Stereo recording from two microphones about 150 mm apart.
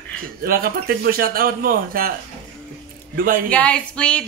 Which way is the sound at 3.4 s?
10° left (ahead or behind).